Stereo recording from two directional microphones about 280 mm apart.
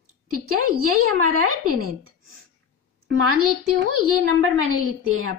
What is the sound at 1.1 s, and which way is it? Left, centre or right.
A woman's voice, right.